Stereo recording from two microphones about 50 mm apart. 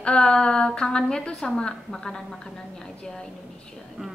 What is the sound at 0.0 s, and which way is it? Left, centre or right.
A woman's voice, centre.